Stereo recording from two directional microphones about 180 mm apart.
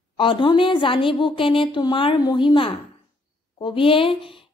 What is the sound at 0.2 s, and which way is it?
Speech, 30° left (ahead or behind).